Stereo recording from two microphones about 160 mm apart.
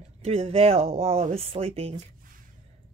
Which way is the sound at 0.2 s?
40° right (ahead or behind).